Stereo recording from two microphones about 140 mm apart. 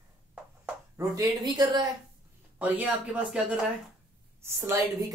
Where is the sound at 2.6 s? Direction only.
10° right (ahead or behind).